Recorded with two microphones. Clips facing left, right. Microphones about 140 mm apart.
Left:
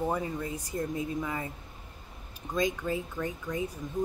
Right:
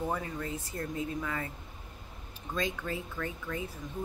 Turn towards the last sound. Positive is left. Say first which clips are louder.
# left 4 dB
turn(degrees=15)  # may be behind; listen again after turning